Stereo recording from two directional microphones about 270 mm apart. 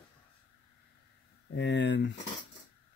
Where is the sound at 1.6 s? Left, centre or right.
Left.